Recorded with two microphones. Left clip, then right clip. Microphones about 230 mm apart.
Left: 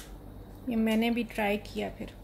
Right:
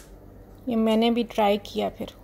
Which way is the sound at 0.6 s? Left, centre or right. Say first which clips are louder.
Right 7 dB; right.